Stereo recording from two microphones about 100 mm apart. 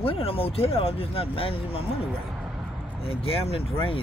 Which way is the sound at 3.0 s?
70° left (ahead or behind).